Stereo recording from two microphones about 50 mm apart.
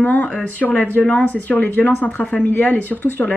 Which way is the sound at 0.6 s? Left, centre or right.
Centre.